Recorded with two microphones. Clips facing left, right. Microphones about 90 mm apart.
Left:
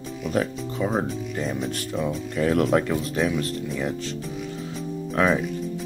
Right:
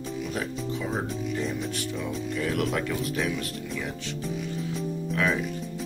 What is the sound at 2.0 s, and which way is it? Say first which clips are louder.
Speech: left 7 dB; 40° left (ahead or behind).